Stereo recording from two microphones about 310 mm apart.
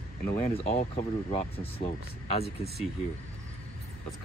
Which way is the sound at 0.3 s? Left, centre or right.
Centre.